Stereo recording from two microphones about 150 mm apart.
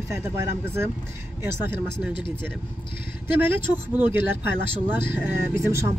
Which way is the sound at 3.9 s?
10° right (ahead or behind).